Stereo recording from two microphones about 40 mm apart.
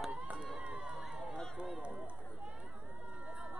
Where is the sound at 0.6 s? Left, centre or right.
Right.